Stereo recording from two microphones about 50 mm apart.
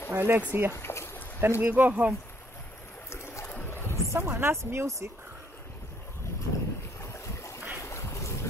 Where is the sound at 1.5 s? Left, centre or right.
Right.